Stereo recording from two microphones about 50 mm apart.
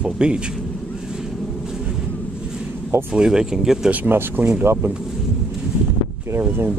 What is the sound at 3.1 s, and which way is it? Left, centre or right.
Speech, centre.